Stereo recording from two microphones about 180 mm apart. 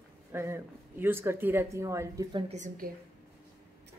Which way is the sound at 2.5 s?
45° right (ahead or behind).